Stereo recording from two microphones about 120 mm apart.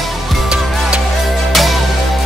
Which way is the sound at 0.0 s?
Centre (ahead or behind).